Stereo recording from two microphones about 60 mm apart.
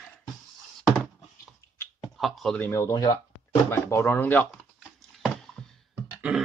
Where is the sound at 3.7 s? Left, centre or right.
Left.